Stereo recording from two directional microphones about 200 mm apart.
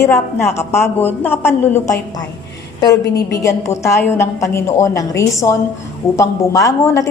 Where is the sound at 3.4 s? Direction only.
15° left (ahead or behind).